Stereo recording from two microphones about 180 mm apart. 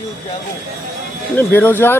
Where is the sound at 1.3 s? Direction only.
10° left (ahead or behind).